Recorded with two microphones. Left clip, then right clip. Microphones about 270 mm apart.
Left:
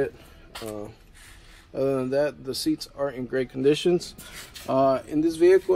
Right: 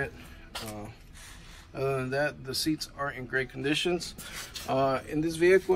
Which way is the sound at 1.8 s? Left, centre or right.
Centre.